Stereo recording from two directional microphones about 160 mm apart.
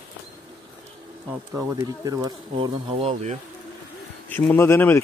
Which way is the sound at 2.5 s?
35° right (ahead or behind).